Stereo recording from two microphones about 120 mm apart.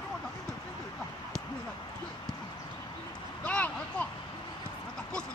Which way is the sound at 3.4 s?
10° left (ahead or behind).